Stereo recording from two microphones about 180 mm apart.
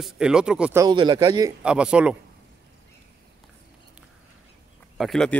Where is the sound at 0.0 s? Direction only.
5° right (ahead or behind).